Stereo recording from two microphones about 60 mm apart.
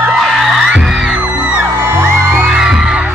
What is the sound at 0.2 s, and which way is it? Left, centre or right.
Music, centre.